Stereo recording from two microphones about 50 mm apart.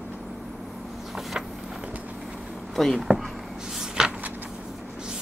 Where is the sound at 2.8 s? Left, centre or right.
Centre.